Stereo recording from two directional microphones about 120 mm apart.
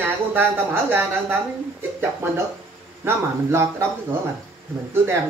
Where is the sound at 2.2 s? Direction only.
20° right (ahead or behind).